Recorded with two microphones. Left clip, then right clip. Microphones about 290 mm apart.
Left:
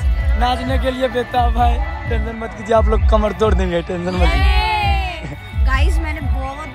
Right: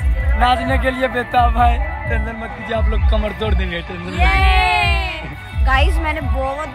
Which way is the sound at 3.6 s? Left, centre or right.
Left.